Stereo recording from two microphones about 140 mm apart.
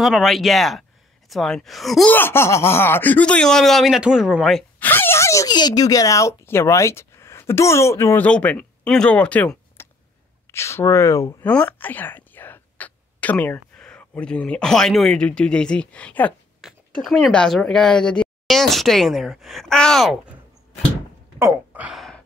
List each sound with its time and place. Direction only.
0.0 s a woman's voice: centre (ahead or behind)
2.1 s speech: 15° left (ahead or behind); by 4.6 s centre (ahead or behind)
4.7 s speech: 15° left (ahead or behind)
11.4 s a woman's voice: 10° left (ahead or behind)
21.4 s a sound: 15° right (ahead or behind)
21.9 s a sound: centre (ahead or behind)